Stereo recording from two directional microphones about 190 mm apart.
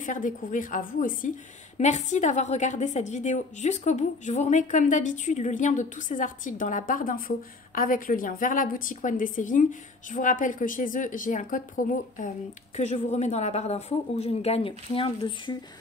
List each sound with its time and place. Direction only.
0.0 s a woman's voice: 45° left (ahead or behind); by 15.5 s 25° left (ahead or behind)